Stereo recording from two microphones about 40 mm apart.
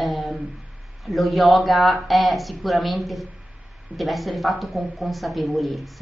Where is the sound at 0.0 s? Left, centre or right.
Centre.